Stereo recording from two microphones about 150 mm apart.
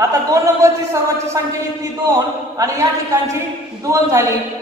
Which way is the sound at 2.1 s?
20° right (ahead or behind).